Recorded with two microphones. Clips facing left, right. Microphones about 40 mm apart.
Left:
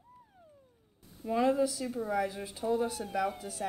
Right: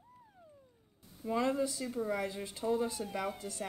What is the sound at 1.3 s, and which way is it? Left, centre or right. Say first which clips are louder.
Speech: left 4 dB; centre.